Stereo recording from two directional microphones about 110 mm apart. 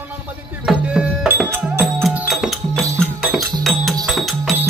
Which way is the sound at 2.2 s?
5° right (ahead or behind).